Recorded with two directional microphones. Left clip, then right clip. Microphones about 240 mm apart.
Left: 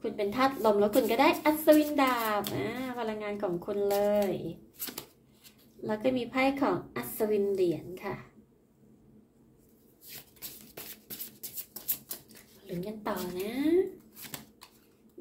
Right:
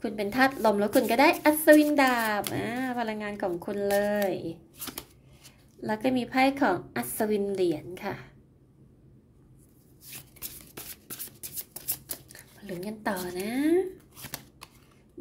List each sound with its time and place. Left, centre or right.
0.0 s speech: right
5.9 s speech: right
12.8 s speech: right